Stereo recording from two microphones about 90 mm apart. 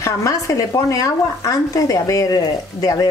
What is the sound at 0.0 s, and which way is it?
Speech, 35° left (ahead or behind).